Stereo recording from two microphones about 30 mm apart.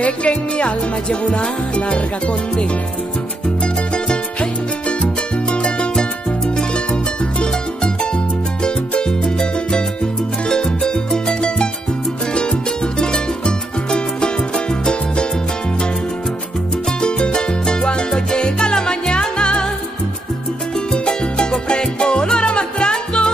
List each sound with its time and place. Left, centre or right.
0.0 s speech: left
1.8 s music: left
3.6 s music: left
5.9 s music: left
6.7 s music: left; by 11.3 s centre
11.4 s music: left
17.0 s music: left
21.0 s salsa music: left